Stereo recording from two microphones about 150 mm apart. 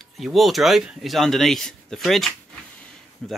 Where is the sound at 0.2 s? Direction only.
Centre (ahead or behind).